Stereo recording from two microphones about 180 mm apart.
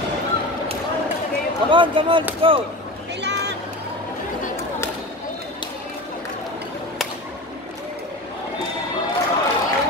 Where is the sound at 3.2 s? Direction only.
70° right (ahead or behind).